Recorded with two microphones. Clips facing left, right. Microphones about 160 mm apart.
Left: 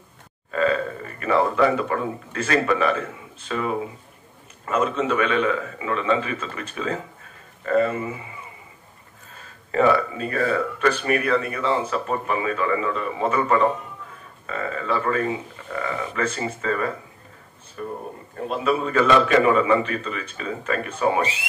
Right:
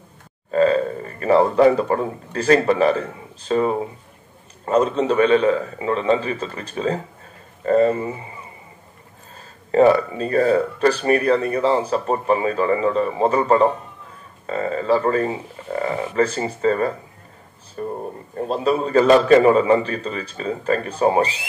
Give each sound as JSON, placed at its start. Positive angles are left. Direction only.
{"t": 0.5, "sound": "speech", "side_deg": -35}
{"t": 9.4, "sound": "speech", "side_deg": -35}